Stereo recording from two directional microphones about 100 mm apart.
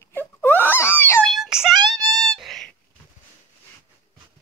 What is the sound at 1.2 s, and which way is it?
Child singing, centre (ahead or behind).